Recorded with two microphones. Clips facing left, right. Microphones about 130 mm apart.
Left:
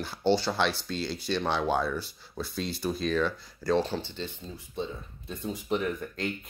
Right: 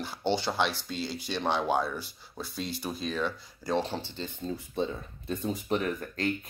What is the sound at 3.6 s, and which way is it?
Speech, 20° right (ahead or behind).